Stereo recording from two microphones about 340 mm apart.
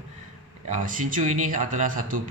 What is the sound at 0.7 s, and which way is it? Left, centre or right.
Speech, right.